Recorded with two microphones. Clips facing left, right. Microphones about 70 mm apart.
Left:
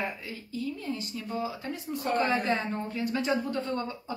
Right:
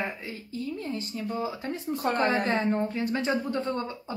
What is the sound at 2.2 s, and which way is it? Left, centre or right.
A woman's voice, right.